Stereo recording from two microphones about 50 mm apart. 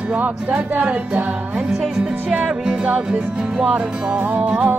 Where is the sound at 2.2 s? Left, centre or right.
Right.